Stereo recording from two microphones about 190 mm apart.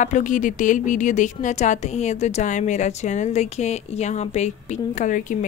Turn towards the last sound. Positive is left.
turn(degrees=45)  # may be behind; listen again after turning